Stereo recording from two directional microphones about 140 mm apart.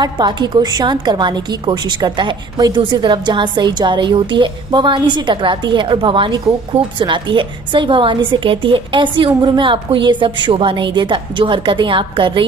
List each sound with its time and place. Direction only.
0.0 s a woman's voice: 30° right (ahead or behind)